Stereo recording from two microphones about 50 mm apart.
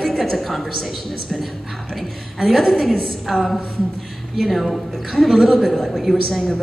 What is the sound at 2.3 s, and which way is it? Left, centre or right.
A woman's voice, centre.